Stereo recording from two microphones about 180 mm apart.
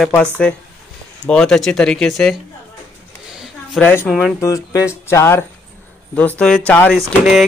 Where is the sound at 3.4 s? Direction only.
Centre (ahead or behind).